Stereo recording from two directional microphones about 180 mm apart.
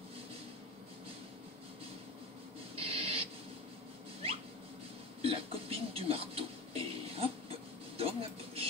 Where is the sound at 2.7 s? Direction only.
30° right (ahead or behind).